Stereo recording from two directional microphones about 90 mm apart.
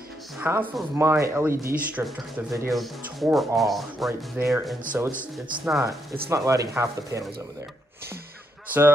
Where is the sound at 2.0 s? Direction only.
15° right (ahead or behind).